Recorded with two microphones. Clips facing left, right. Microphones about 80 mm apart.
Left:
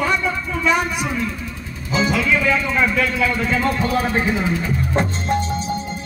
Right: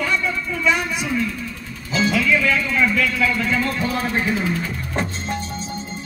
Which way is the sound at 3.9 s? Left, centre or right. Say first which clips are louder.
Left 3 dB; centre.